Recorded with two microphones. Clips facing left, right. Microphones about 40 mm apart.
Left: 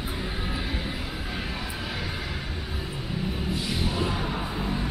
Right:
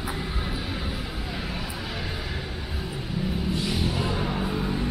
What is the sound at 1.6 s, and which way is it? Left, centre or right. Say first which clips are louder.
Vehicle: even; left.